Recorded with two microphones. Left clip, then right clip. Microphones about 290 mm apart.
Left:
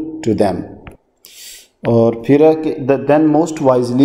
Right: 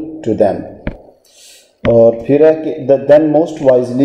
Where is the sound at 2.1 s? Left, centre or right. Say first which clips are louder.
Right 2 dB; left.